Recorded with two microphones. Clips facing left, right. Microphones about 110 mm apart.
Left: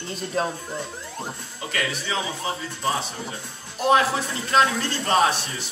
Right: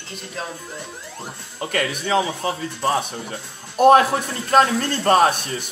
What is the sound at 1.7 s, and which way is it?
Speech, 55° right (ahead or behind).